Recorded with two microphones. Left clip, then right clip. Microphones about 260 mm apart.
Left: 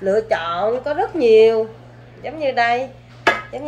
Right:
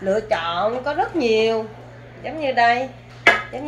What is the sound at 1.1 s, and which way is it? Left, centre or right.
Speech, left.